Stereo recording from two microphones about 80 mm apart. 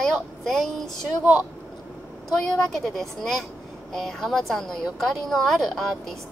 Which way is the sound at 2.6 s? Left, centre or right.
Centre.